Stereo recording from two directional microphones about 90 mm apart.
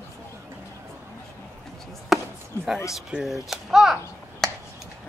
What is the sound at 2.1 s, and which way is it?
Chop, 5° right (ahead or behind).